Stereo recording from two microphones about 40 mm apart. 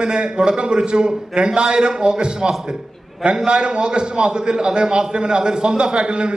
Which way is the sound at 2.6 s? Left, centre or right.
Centre.